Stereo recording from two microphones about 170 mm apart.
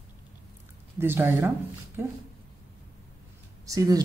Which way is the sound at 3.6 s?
20° right (ahead or behind).